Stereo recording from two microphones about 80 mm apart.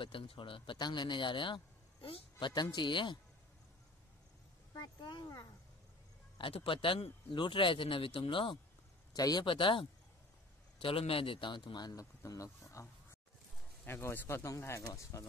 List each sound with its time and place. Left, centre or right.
0.0 s a man's voice: left
2.4 s speech: left
4.7 s speech: left
6.3 s a man's voice: left
9.1 s speech: left
11.3 s speech: left
12.3 s speech: left
13.8 s speech: left